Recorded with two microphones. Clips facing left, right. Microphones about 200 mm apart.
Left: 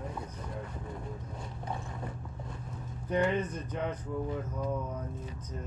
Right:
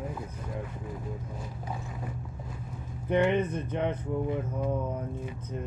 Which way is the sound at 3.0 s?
25° right (ahead or behind).